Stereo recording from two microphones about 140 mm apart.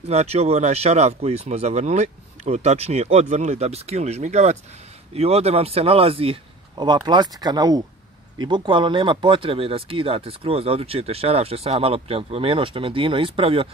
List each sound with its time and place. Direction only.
0.1 s speech: 50° right (ahead or behind)